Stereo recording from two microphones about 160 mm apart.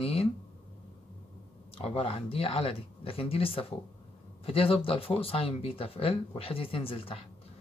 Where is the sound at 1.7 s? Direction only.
35° left (ahead or behind).